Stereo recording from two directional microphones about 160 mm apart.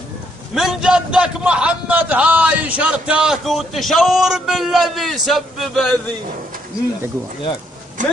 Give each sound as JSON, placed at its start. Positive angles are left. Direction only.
{"t": 0.6, "sound": "a man's voice", "side_deg": -5}
{"t": 8.0, "sound": "speech", "side_deg": -50}